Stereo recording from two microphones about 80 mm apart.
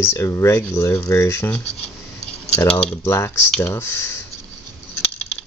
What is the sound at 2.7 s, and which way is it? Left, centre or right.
Speech, centre.